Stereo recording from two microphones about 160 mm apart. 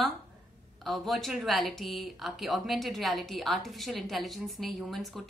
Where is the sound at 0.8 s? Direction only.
Centre (ahead or behind).